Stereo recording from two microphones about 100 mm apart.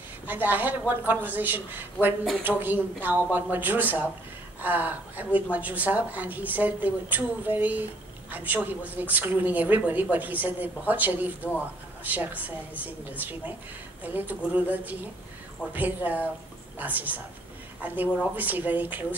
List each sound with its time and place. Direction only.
0.3 s a woman's voice: 20° right (ahead or behind)